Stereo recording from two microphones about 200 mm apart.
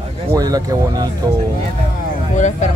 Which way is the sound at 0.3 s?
20° right (ahead or behind).